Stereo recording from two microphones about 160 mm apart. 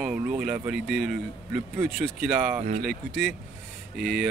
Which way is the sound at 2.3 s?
10° right (ahead or behind).